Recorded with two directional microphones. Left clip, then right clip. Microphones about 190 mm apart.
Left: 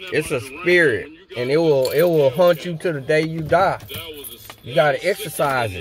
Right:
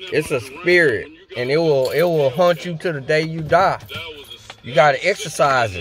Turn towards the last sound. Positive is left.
turn(degrees=-5)  # may be behind; listen again after turning